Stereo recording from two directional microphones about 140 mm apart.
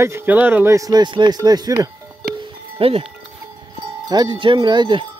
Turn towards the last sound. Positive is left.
turn(degrees=-35)  # may be behind; listen again after turning